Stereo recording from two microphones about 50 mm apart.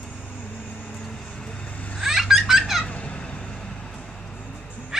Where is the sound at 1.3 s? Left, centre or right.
Centre.